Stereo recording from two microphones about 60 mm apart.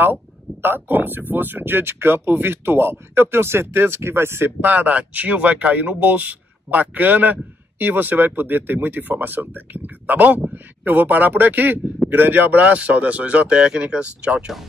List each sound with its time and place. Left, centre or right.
0.0 s speech: right
4.6 s speech: right